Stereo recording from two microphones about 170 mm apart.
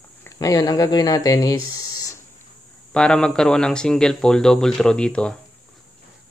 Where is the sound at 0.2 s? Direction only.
20° left (ahead or behind).